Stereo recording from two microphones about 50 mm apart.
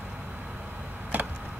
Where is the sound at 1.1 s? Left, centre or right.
Right.